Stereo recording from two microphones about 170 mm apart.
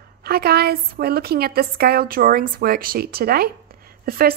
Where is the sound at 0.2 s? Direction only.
65° right (ahead or behind).